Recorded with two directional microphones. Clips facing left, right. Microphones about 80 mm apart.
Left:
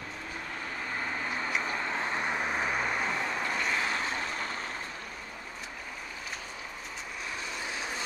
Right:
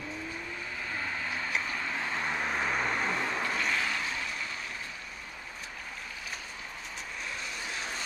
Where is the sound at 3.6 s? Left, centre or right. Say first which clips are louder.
Left 1 dB; centre.